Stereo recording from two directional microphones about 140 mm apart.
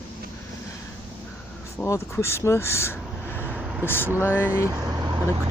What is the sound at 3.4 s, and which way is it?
Vehicle, 5° right (ahead or behind).